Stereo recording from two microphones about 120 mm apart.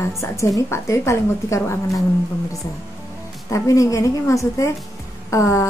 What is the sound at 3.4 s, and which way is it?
Speech, 25° left (ahead or behind).